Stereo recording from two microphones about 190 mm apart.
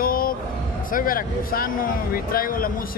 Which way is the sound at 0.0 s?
50° left (ahead or behind).